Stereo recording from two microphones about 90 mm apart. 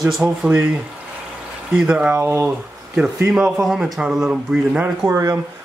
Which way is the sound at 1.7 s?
10° right (ahead or behind).